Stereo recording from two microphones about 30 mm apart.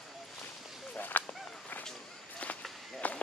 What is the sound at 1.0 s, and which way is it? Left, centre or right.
Speech, left.